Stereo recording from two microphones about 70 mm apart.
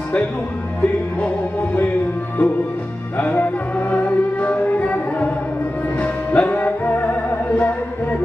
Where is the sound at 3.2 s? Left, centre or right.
Left.